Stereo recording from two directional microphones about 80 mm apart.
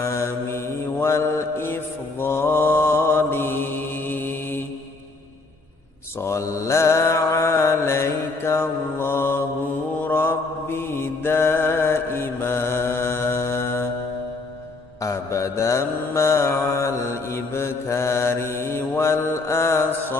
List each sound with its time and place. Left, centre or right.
0.0 s mantra: left
6.2 s mantra: left
15.0 s mantra: left